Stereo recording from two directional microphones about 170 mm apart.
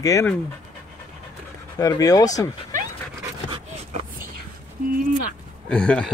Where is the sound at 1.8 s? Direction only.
20° left (ahead or behind).